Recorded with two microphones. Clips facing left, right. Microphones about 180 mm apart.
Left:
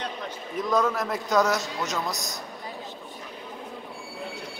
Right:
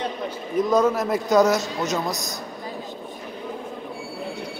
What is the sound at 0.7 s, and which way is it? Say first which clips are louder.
A man's voice: right 4 dB; 20° right (ahead or behind).